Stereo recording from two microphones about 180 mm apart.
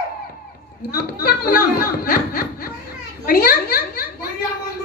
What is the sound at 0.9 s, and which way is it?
A woman's voice, 55° left (ahead or behind).